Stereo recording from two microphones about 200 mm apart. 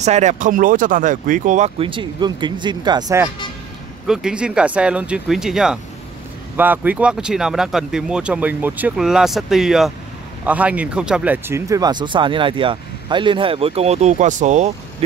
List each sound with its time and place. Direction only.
0.0 s speech: 35° right (ahead or behind); by 3.3 s 20° right (ahead or behind)
4.1 s speech: 5° right (ahead or behind); by 15.0 s 35° right (ahead or behind)